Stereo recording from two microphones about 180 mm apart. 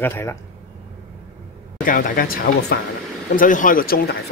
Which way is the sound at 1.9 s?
50° left (ahead or behind).